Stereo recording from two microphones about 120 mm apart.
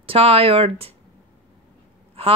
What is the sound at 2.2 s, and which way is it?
Speech, 55° right (ahead or behind).